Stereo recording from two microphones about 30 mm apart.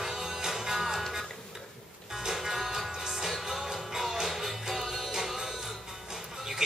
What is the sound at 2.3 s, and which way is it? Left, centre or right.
Music, centre.